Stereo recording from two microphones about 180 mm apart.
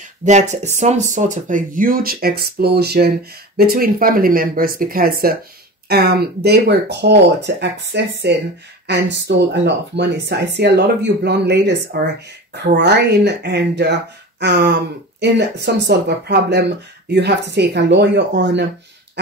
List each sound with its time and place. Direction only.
0.2 s speech: 40° right (ahead or behind); by 18.7 s 75° right (ahead or behind)